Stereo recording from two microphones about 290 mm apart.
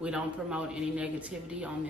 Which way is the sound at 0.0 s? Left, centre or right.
Centre.